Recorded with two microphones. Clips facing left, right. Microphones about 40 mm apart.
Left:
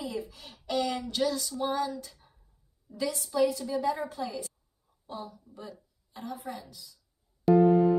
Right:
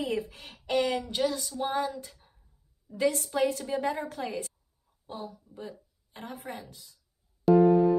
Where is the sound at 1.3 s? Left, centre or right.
Right.